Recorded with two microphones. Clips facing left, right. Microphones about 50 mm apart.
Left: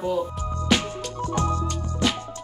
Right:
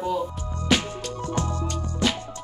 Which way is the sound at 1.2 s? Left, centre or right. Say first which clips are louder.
Left 4 dB; left.